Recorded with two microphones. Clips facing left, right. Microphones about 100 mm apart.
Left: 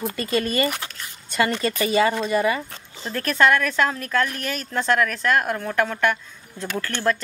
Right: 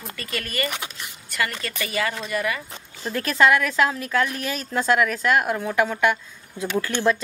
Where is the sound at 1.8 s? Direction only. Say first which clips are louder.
Left 6 dB; 25° left (ahead or behind).